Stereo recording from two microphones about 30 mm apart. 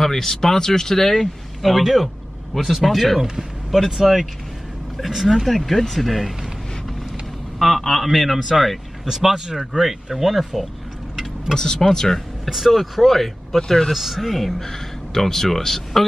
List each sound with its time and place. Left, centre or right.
0.0 s speech: centre
1.7 s speech: centre
2.5 s speech: centre
5.3 s speech: centre
7.5 s speech: centre
9.0 s speech: centre
11.5 s speech: centre
12.4 s speech: centre
13.9 s speech: centre
14.6 s speech: centre